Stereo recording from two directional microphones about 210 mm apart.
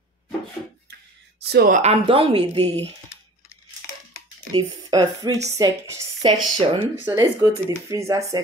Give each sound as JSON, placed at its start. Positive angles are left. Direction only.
{"t": 1.4, "sound": "speech", "side_deg": -50}
{"t": 1.8, "sound": "a woman's voice", "side_deg": -30}
{"t": 4.5, "sound": "a woman's voice", "side_deg": -20}
{"t": 7.1, "sound": "a woman's voice", "side_deg": -15}